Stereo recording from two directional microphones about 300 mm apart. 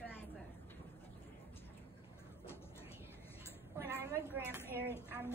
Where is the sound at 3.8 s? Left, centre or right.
Centre.